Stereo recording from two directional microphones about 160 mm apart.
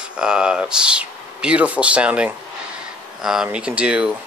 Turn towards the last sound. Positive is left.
turn(degrees=-5)  # may be behind; listen again after turning